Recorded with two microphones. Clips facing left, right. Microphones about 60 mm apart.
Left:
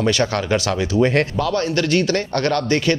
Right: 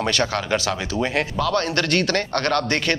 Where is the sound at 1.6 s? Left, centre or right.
Right.